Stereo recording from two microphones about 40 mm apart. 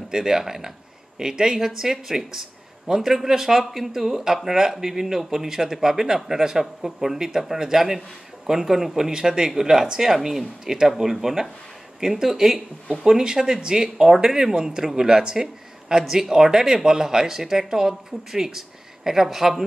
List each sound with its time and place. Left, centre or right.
0.1 s speech: centre